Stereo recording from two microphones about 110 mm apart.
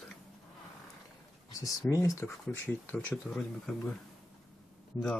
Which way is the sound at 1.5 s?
30° left (ahead or behind).